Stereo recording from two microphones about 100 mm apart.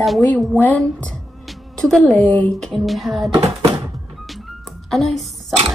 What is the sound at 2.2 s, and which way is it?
Speech, 15° left (ahead or behind).